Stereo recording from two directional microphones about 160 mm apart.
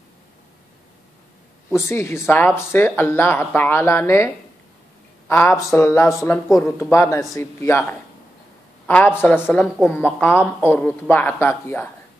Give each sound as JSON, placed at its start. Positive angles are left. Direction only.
{"t": 1.9, "sound": "speech", "side_deg": 15}
{"t": 5.3, "sound": "speech", "side_deg": 15}